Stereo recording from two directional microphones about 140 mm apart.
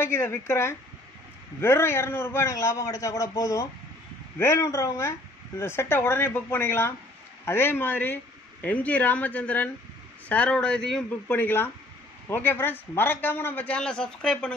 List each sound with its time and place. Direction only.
0.0 s a man's voice: 15° left (ahead or behind)